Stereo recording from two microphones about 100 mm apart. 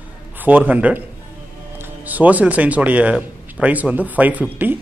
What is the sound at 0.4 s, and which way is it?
A man's voice, 15° right (ahead or behind).